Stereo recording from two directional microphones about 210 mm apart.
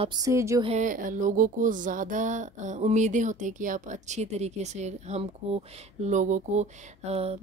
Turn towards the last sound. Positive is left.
turn(degrees=-30)  # may be behind; listen again after turning